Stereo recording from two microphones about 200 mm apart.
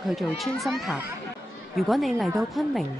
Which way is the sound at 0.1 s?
Centre (ahead or behind).